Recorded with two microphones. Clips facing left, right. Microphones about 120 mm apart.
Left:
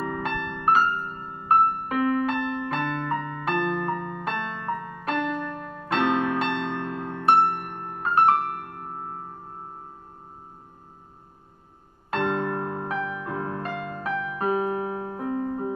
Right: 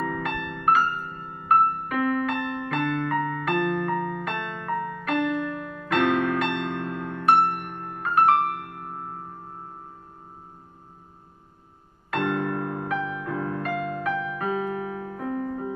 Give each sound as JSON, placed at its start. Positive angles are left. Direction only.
{"t": 0.0, "sound": "music", "side_deg": 30}
{"t": 12.1, "sound": "music", "side_deg": 30}
{"t": 13.2, "sound": "piano", "side_deg": 30}